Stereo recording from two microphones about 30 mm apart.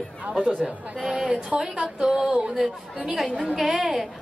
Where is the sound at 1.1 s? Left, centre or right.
Centre.